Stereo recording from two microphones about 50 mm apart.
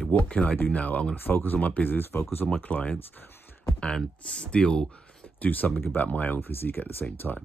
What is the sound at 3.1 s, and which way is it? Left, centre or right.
Speech, left.